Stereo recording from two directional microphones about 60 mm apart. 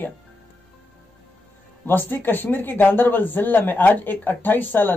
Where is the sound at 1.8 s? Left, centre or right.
Left.